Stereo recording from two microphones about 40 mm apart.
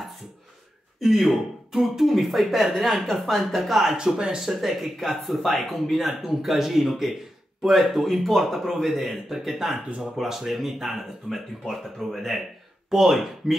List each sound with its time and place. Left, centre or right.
0.9 s speech: centre
3.9 s speech: right
4.4 s speech: centre